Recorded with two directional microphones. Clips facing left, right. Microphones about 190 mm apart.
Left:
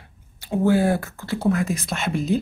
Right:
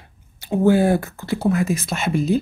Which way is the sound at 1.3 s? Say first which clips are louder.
Right 2 dB; 5° right (ahead or behind).